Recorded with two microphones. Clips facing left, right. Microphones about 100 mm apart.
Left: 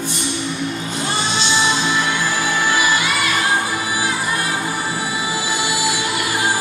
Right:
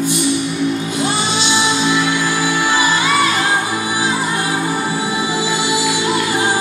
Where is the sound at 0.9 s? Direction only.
15° right (ahead or behind).